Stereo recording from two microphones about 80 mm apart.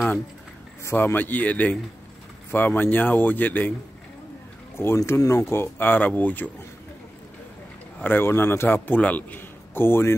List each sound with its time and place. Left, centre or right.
0.9 s a man's voice: left
4.7 s speech: left
8.0 s a man's voice: left